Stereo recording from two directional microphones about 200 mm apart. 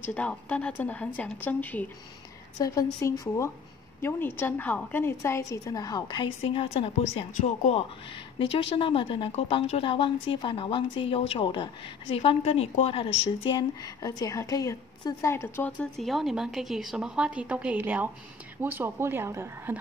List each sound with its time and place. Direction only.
0.1 s a woman's voice: 5° left (ahead or behind); by 19.8 s 10° right (ahead or behind)